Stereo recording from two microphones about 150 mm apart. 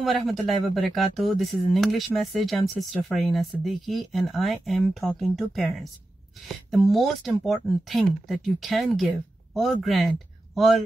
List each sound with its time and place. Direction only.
0.0 s speech: centre (ahead or behind)
6.7 s speech: centre (ahead or behind)